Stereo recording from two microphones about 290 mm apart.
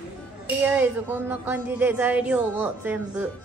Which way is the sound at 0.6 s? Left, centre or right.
Centre.